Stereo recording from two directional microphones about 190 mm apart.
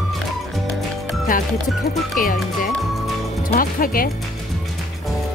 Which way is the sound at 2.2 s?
45° left (ahead or behind).